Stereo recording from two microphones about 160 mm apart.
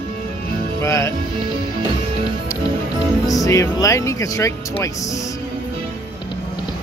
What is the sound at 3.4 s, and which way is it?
Speech, 20° left (ahead or behind).